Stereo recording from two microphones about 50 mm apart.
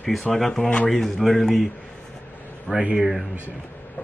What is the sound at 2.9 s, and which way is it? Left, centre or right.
Speech, centre.